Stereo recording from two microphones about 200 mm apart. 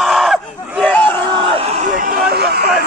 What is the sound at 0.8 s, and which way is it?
Crowd, 10° left (ahead or behind).